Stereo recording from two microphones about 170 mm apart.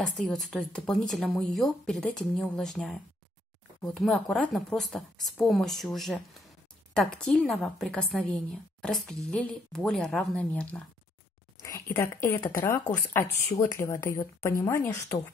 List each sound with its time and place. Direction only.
0.0 s a woman's voice: centre (ahead or behind)